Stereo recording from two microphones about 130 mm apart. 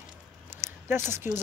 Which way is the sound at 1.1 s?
20° right (ahead or behind).